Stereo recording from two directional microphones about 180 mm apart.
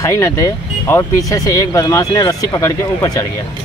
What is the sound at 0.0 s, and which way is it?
Speech, 15° left (ahead or behind).